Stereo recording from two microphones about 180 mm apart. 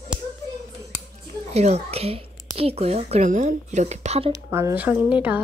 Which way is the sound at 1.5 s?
35° right (ahead or behind).